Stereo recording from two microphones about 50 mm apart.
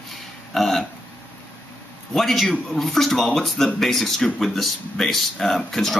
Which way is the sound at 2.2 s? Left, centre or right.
Centre.